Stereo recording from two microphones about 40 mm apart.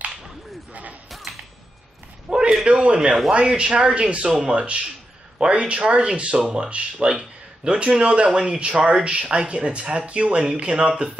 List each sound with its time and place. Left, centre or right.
2.2 s a sound: centre
2.6 s speech: right
8.3 s speech: centre